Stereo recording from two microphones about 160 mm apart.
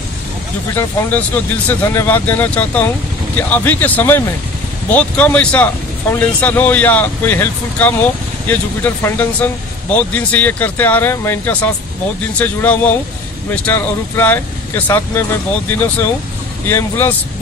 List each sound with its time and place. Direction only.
0.7 s speech: 10° left (ahead or behind)
16.6 s speech: 15° left (ahead or behind)